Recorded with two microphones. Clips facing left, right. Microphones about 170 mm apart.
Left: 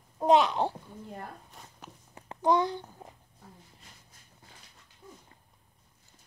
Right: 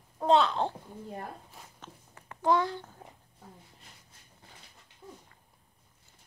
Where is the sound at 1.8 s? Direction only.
20° left (ahead or behind).